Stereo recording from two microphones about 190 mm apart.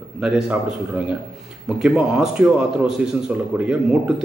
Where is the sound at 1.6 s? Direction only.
5° right (ahead or behind).